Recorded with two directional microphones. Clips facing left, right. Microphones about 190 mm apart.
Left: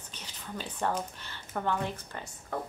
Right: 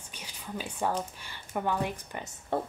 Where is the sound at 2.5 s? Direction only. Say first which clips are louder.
Right 5 dB; 30° right (ahead or behind).